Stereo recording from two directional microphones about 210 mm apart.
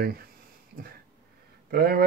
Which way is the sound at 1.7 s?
45° right (ahead or behind).